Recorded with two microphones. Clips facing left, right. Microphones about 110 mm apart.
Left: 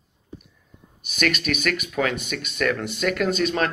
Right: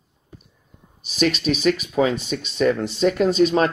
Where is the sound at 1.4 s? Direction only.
30° right (ahead or behind).